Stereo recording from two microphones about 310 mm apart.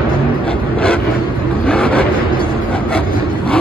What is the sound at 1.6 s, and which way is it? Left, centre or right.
Vehicle, centre.